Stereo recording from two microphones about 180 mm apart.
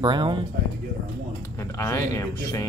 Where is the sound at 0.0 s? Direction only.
25° right (ahead or behind).